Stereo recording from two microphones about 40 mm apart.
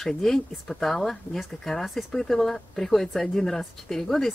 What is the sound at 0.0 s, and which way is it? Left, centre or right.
Speech, centre.